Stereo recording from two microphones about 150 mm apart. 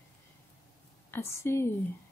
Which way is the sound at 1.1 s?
15° left (ahead or behind).